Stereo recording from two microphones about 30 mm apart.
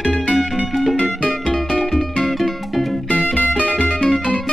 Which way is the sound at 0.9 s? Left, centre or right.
Left.